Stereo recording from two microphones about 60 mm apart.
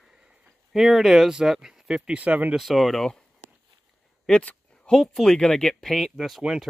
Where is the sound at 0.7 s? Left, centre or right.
Centre; by 2.5 s right.